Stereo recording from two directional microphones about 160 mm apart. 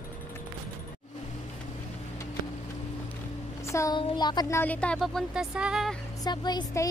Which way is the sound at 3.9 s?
30° left (ahead or behind).